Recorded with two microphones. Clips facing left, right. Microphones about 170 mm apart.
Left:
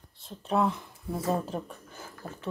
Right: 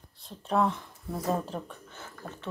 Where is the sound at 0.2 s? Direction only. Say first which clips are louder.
Even; centre (ahead or behind).